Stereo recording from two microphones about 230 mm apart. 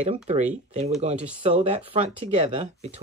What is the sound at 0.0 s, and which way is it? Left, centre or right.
Speech, right.